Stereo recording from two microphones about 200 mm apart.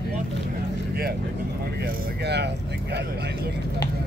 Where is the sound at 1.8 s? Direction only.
55° right (ahead or behind).